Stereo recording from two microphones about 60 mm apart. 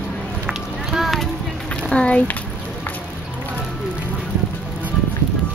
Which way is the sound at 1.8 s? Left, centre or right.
Centre.